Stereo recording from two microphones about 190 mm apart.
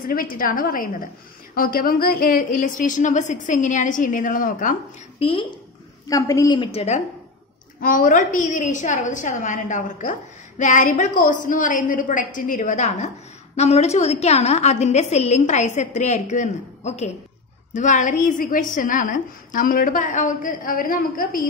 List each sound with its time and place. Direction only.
0.0 s a woman's voice: 50° left (ahead or behind)
5.2 s a woman's voice: 25° left (ahead or behind)
7.8 s a woman's voice: 45° left (ahead or behind)